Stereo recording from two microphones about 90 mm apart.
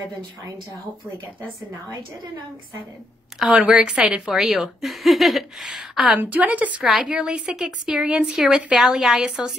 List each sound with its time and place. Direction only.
3.3 s a woman's voice: 5° right (ahead or behind)
6.8 s a woman's voice: 5° right (ahead or behind)